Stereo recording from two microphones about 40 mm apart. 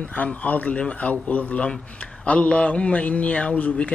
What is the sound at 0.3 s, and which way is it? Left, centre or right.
A man's voice, left.